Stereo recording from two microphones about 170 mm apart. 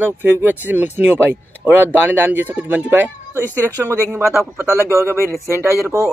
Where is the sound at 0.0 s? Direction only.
10° right (ahead or behind).